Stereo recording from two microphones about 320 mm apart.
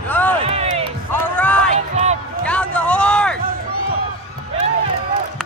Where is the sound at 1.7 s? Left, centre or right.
Centre.